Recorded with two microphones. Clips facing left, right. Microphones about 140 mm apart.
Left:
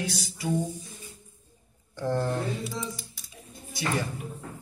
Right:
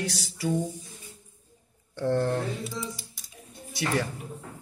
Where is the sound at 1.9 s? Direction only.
60° right (ahead or behind).